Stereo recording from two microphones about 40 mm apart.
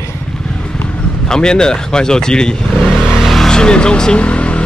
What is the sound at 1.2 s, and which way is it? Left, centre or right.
Speech, centre.